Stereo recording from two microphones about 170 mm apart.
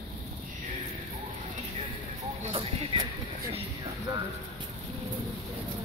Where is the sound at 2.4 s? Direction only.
35° right (ahead or behind).